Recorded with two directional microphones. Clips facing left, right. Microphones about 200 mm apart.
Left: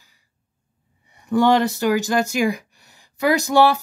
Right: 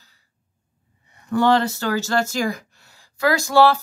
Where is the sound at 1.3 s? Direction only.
15° left (ahead or behind).